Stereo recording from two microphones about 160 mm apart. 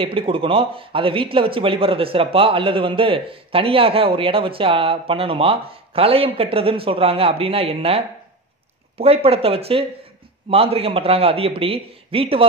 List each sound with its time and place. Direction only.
0.0 s a man's voice: 35° right (ahead or behind)